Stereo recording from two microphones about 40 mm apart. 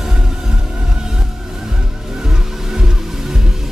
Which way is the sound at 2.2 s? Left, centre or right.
Centre.